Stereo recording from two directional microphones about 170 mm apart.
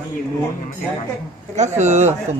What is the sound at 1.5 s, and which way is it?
Speech, 45° right (ahead or behind).